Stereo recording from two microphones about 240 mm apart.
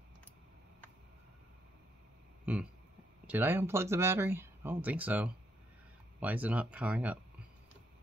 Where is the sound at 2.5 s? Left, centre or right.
Centre.